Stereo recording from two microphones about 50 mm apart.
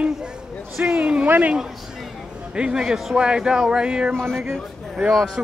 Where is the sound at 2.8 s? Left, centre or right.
Centre.